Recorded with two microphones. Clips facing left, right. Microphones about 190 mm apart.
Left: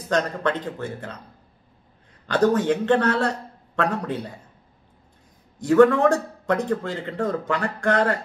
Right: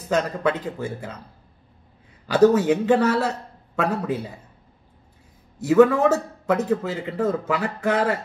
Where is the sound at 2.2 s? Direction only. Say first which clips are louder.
Right 3 dB; 10° right (ahead or behind).